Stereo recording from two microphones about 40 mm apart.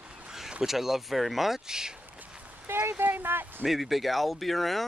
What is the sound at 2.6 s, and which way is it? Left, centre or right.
Speech, right.